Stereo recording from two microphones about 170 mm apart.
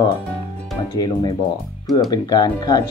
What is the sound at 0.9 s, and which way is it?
Speech, 25° left (ahead or behind).